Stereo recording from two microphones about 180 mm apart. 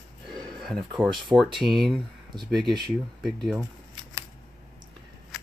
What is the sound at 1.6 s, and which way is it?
Speech, centre (ahead or behind).